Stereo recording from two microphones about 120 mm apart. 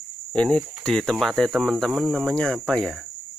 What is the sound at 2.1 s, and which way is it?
Cricket, 10° left (ahead or behind).